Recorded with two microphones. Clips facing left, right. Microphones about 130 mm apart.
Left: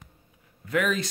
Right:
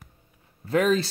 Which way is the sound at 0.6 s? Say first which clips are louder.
Right 4 dB; 30° right (ahead or behind).